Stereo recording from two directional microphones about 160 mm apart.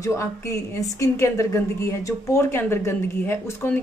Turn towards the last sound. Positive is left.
turn(degrees=15)  # may be behind; listen again after turning